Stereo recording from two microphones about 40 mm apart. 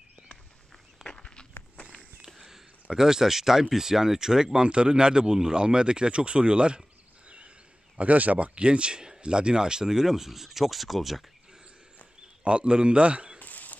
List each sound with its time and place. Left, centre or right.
1.0 s walk: left
2.2 s speech: centre
4.6 s speech: right
7.2 s a sound: right
8.0 s speech: right; by 11.2 s centre
12.4 s a man's voice: right
13.4 s a sound: left